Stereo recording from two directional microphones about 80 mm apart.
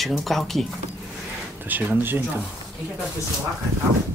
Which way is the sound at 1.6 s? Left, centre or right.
Right.